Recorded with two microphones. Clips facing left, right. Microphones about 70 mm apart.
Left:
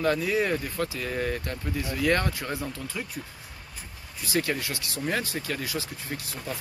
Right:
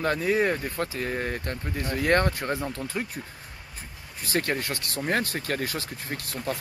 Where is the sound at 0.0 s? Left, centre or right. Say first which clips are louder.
Right 1 dB; right.